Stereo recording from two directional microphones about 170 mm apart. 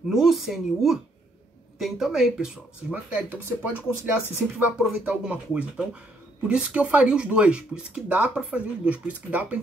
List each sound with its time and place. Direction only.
0.1 s speech: centre (ahead or behind)